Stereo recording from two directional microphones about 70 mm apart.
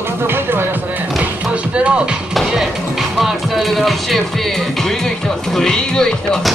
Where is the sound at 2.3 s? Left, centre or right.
Centre.